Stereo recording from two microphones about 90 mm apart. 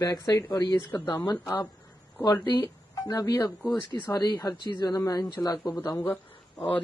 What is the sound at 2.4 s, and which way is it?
Speech, 50° left (ahead or behind).